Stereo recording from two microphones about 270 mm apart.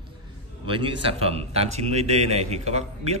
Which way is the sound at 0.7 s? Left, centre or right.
Centre.